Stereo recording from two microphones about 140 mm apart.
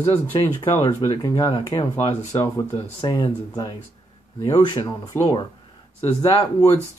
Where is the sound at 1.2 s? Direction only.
30° left (ahead or behind).